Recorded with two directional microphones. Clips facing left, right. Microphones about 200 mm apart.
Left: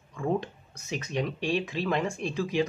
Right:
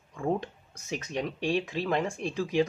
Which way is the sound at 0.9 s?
45° right (ahead or behind).